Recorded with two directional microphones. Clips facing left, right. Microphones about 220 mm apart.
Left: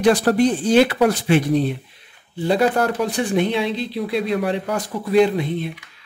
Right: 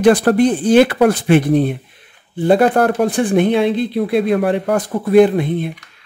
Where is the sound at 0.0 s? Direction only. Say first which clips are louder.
Right 4 dB; 55° right (ahead or behind).